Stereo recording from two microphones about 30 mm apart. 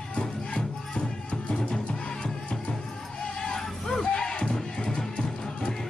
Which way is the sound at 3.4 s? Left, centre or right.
Centre.